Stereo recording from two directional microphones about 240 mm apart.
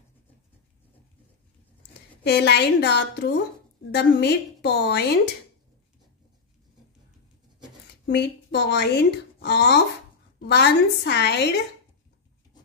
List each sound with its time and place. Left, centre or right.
2.2 s speech: left
8.1 s speech: left